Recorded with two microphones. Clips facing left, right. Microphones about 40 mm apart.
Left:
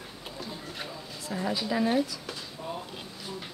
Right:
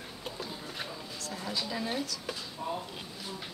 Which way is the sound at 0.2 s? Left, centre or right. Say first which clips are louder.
Even; centre.